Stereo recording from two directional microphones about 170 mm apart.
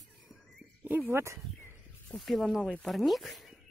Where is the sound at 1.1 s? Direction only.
15° right (ahead or behind).